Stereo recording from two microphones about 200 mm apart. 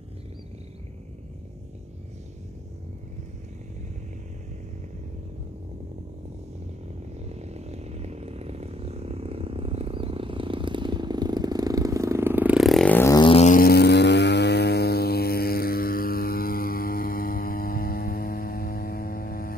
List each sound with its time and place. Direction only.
7.2 s chainsaw: 35° right (ahead or behind); by 19.5 s 50° left (ahead or behind)